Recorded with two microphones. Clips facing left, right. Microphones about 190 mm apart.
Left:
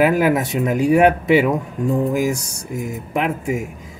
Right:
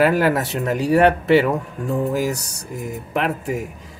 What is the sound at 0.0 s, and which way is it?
Speech, 10° left (ahead or behind).